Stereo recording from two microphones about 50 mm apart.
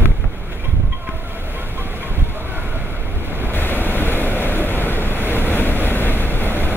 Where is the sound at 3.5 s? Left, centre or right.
Left.